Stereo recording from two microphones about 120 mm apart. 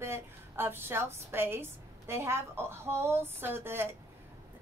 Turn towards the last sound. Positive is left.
turn(degrees=-20)  # may be behind; listen again after turning